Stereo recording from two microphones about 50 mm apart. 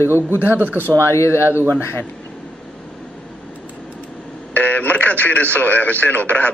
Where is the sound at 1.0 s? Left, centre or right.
Left.